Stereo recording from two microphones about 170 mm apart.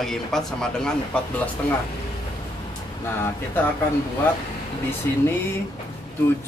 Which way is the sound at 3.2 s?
10° left (ahead or behind).